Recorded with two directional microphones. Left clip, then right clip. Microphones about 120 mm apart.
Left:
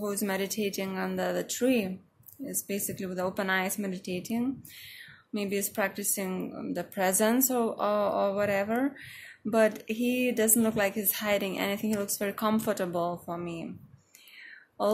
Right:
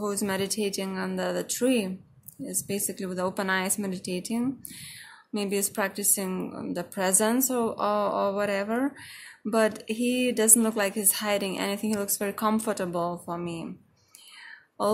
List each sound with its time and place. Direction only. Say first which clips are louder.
0.0 s a woman's voice: right 2 dB; 25° right (ahead or behind)